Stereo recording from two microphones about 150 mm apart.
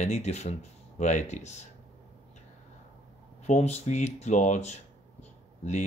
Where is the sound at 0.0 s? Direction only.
45° left (ahead or behind).